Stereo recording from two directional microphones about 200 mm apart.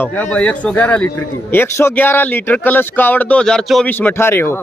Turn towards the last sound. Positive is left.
turn(degrees=10)  # may be behind; listen again after turning